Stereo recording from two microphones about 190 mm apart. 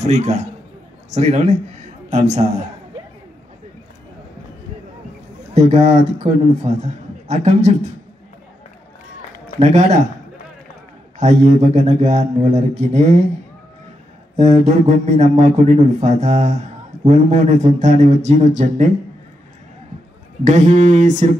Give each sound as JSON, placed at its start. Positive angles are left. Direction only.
{"t": 0.0, "sound": "a man's voice", "side_deg": -35}
{"t": 5.5, "sound": "a man's voice", "side_deg": -35}
{"t": 9.6, "sound": "a man's voice", "side_deg": -35}
{"t": 11.1, "sound": "a man's voice", "side_deg": -35}
{"t": 14.3, "sound": "a man's voice", "side_deg": -35}
{"t": 20.4, "sound": "a man's voice", "side_deg": -35}